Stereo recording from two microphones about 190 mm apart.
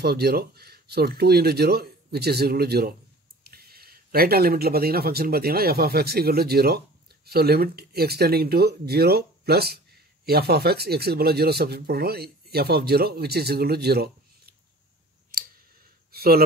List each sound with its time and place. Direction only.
0.0 s speech: 55° right (ahead or behind)
15.3 s clicking: 50° right (ahead or behind)
16.1 s a sound: 50° right (ahead or behind)